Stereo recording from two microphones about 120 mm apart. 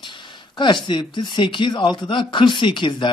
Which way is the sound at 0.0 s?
40° left (ahead or behind).